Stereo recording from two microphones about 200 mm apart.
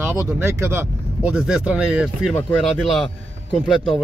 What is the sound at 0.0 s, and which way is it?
Speech, 10° right (ahead or behind).